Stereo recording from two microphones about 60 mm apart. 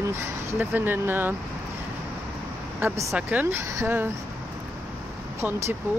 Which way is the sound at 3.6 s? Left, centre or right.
Right.